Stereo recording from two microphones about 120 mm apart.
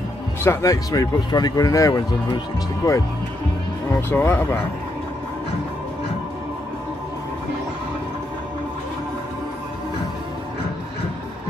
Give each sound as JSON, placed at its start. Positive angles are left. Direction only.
{"t": 0.4, "sound": "speech", "side_deg": 25}
{"t": 4.1, "sound": "speech", "side_deg": 20}